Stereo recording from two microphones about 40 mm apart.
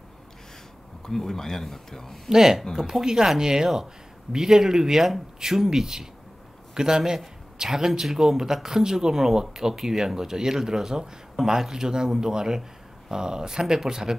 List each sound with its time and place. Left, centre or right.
1.0 s speech: centre
2.2 s a man's voice: centre